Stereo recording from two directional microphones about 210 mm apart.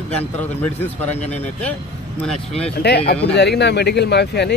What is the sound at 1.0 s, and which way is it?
Speech, 5° left (ahead or behind).